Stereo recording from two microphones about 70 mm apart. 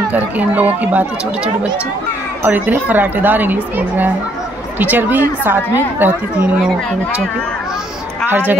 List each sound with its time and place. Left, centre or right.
0.1 s a woman's voice: right
8.3 s speech: right